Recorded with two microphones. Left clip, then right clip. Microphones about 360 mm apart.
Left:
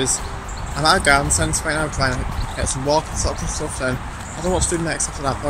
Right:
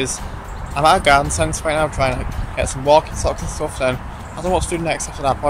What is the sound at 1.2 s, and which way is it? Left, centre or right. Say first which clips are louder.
Speech: right 2 dB; centre.